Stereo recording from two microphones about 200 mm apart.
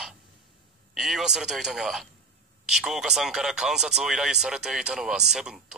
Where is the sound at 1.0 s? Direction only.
Centre (ahead or behind).